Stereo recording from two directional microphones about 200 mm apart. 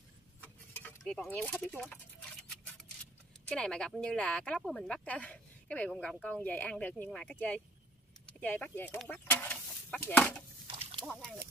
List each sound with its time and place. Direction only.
0.4 s a sound: 10° left (ahead or behind)
3.4 s speech: 5° left (ahead or behind)
10.7 s slosh: 25° right (ahead or behind)
11.1 s speech: centre (ahead or behind)